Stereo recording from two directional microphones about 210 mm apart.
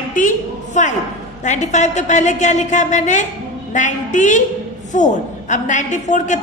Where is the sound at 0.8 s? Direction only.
35° left (ahead or behind).